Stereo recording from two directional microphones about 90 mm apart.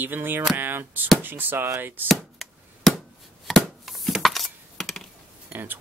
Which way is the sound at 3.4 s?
Centre (ahead or behind).